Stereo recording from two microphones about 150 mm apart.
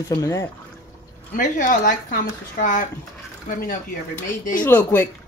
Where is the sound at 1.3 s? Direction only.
60° left (ahead or behind).